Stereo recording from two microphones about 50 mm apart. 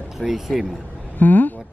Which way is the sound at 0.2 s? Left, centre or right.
Centre.